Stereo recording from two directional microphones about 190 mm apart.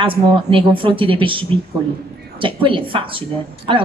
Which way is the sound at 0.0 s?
30° right (ahead or behind).